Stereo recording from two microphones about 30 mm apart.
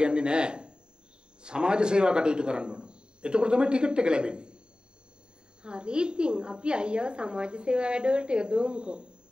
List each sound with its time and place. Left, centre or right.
0.0 s a sound: right
1.4 s a woman's voice: right
5.6 s a woman's voice: right